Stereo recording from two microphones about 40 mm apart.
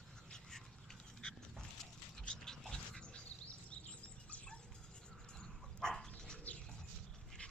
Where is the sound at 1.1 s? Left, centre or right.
Centre.